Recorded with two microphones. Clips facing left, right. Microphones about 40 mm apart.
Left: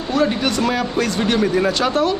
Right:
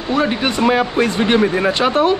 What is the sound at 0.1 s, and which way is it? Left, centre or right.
Speech, right.